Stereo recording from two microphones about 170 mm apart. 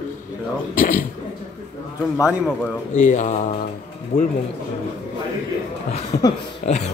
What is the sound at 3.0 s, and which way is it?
Speech, 45° left (ahead or behind).